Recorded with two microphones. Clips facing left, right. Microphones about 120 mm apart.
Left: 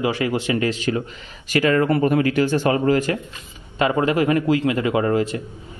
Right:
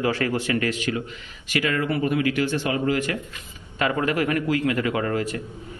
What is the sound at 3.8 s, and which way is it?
A man's voice, 25° left (ahead or behind).